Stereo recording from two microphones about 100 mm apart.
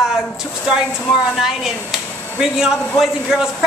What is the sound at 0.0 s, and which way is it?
A woman's voice, 5° right (ahead or behind).